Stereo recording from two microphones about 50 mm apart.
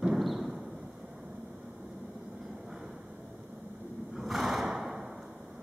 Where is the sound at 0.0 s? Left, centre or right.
Centre.